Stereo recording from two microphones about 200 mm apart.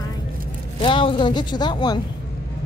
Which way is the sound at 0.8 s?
25° left (ahead or behind).